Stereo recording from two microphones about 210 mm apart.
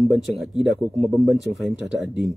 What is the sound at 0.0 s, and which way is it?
Speech, centre (ahead or behind).